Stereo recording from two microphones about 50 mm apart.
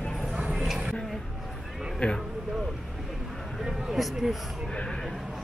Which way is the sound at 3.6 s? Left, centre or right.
Centre.